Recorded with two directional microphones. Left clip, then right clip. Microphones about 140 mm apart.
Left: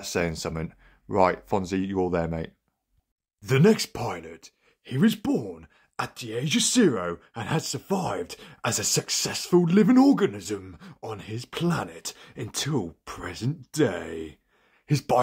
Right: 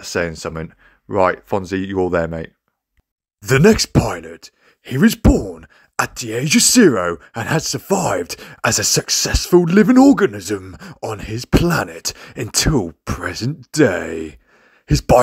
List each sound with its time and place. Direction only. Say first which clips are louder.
0.0 s speech: right 7 dB; 20° right (ahead or behind)
3.4 s speech: right 9 dB; 45° right (ahead or behind)
4.8 s speech: right 10 dB; 50° right (ahead or behind)
10.8 s speech: right 10 dB; 55° right (ahead or behind); by 15.1 s 35° right (ahead or behind)